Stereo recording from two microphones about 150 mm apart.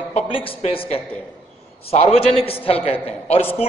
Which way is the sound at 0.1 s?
35° left (ahead or behind).